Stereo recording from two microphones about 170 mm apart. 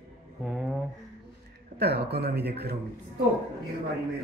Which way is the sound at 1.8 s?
70° right (ahead or behind).